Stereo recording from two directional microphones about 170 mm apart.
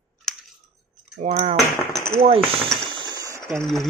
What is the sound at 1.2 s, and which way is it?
Speech, 35° right (ahead or behind).